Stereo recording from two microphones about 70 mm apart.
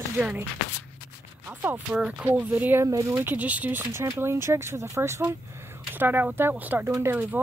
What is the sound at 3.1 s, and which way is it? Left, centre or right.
Speech, right.